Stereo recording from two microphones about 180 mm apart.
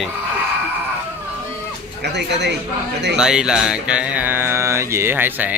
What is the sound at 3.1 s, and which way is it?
Mantra, 5° right (ahead or behind).